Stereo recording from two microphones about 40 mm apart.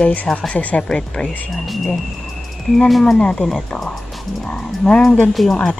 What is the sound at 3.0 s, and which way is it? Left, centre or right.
Speech, centre.